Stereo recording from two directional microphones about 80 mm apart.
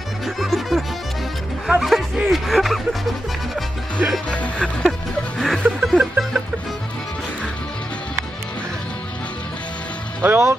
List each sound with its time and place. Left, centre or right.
0.4 s music: centre
1.7 s speech: centre
4.3 s speech: centre
5.4 s music: centre
10.2 s speech: right